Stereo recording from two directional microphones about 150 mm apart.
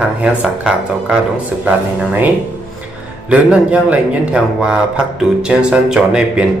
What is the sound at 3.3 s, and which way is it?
Speech, 10° right (ahead or behind).